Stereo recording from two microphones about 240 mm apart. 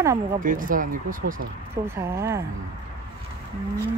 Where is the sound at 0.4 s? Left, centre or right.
Right.